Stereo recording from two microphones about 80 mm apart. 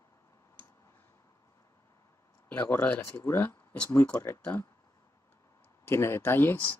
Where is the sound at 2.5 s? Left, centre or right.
Left.